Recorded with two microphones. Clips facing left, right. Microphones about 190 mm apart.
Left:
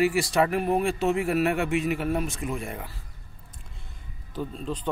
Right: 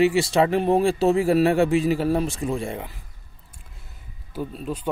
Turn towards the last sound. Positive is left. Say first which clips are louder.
# right 2 dB
turn(degrees=-10)  # may be behind; listen again after turning